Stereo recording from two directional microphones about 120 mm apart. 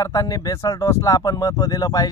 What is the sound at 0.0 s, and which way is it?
Speech, 30° left (ahead or behind).